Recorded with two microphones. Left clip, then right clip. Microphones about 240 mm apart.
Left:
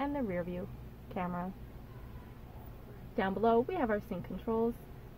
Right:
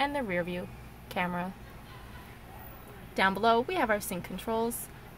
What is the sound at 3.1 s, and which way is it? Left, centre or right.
Speech, centre.